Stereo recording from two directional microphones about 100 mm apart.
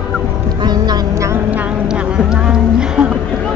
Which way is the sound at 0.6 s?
45° right (ahead or behind).